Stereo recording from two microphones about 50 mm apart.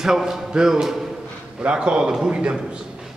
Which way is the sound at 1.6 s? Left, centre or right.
Centre.